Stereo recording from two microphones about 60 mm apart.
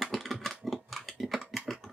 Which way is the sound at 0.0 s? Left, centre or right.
Centre.